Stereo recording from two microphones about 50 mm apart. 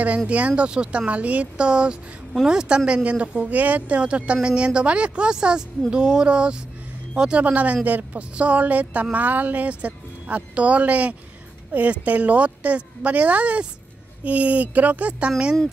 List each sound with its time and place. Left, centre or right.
0.3 s speech: right